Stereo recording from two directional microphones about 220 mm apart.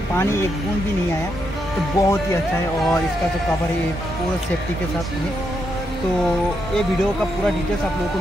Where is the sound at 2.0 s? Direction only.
15° left (ahead or behind).